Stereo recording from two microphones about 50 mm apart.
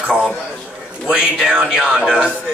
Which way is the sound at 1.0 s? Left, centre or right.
Centre.